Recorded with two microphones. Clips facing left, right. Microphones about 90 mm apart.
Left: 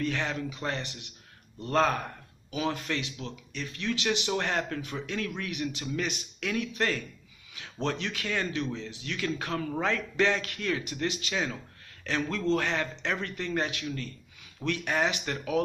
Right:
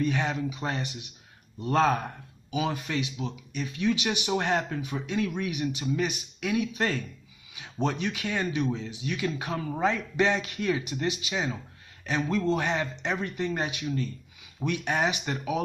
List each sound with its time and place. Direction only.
0.0 s speech: 15° right (ahead or behind)